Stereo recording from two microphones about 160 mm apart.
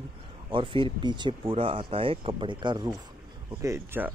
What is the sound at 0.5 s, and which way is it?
Speech, 30° right (ahead or behind).